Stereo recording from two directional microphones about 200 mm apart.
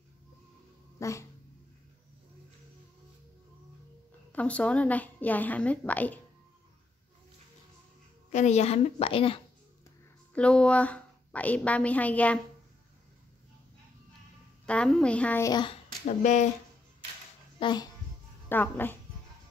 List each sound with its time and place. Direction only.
0.9 s cat: 15° left (ahead or behind)
4.3 s a woman's voice: 5° left (ahead or behind)
8.3 s a woman's voice: 35° left (ahead or behind)
10.3 s a woman's voice: 5° left (ahead or behind)
14.7 s a woman's voice: 5° left (ahead or behind); by 15.8 s 20° left (ahead or behind)
16.1 s a woman's voice: 35° left (ahead or behind)
17.6 s speech: 20° left (ahead or behind)
18.5 s a woman's voice: 10° left (ahead or behind)